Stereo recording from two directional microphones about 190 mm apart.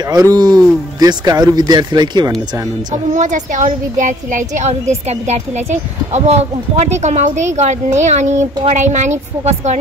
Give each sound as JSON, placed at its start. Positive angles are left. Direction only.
{"t": 0.1, "sound": "speech", "side_deg": -20}
{"t": 2.9, "sound": "a woman's voice", "side_deg": -40}